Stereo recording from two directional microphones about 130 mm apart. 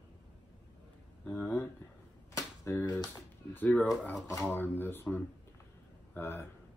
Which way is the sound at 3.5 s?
15° left (ahead or behind).